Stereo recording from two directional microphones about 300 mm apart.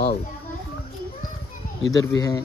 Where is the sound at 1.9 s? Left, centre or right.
Centre.